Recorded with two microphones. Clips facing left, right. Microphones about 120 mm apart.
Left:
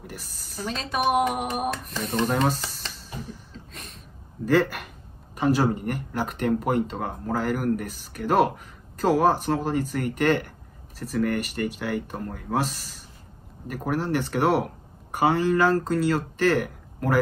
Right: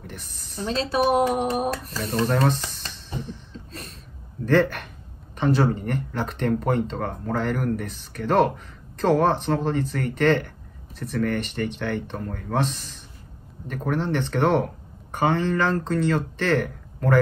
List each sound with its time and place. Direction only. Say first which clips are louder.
0.0 s a woman's voice: even; 5° left (ahead or behind)
0.7 s speech: right 3 dB; 35° right (ahead or behind)
2.2 s speech: right 2 dB; 5° left (ahead or behind)
4.5 s speech: right 2 dB; 5° left (ahead or behind)